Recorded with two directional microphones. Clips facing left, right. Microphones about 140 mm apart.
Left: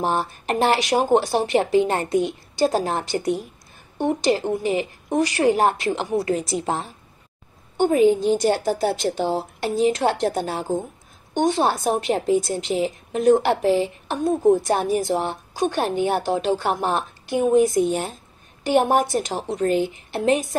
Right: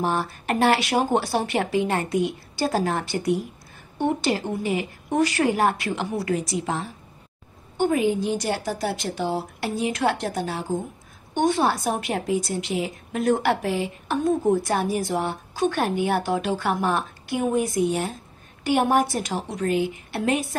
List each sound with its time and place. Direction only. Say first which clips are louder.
0.0 s a woman's voice: left 2 dB; 25° left (ahead or behind)
5.2 s a woman's voice: left 3 dB; 15° left (ahead or behind)
7.7 s a woman's voice: left 5 dB; 25° left (ahead or behind)
11.3 s a woman's voice: left 1 dB; 20° left (ahead or behind); by 14.6 s 35° left (ahead or behind)
14.7 s a woman's voice: left 3 dB; 20° left (ahead or behind)
15.1 s a woman's voice: left 2 dB; 40° left (ahead or behind)
15.8 s a woman's voice: left 2 dB; 25° left (ahead or behind)
19.5 s a woman's voice: left 3 dB; 35° left (ahead or behind)
20.1 s a woman's voice: left 7 dB; 20° left (ahead or behind)